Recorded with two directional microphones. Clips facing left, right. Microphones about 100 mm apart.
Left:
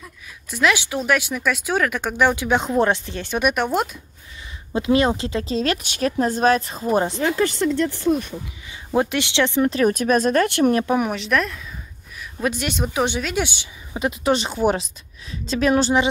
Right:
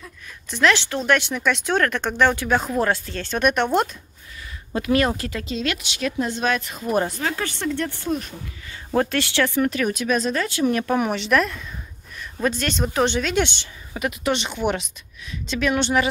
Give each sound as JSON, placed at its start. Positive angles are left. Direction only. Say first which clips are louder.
{"t": 0.5, "sound": "speech", "louder": "even", "side_deg": 10}
{"t": 4.7, "sound": "speech", "louder": "left 2 dB", "side_deg": 25}
{"t": 8.6, "sound": "speech", "louder": "left 1 dB", "side_deg": 15}
{"t": 10.9, "sound": "speech", "louder": "even", "side_deg": 0}
{"t": 13.9, "sound": "speech", "louder": "left 3 dB", "side_deg": 30}